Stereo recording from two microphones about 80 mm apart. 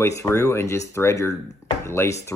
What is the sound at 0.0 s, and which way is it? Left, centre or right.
Speech, left.